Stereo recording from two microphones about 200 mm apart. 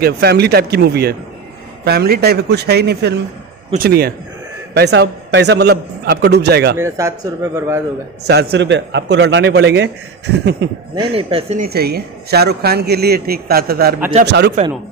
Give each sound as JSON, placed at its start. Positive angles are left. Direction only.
{"t": 0.0, "sound": "a man's voice", "side_deg": -55}
{"t": 6.8, "sound": "speech", "side_deg": -15}
{"t": 8.2, "sound": "a man's voice", "side_deg": -55}
{"t": 11.1, "sound": "speech", "side_deg": -30}
{"t": 11.6, "sound": "a man's voice", "side_deg": -50}